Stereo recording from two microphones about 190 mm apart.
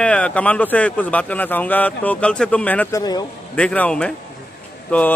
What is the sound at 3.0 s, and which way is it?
Speech, 20° left (ahead or behind).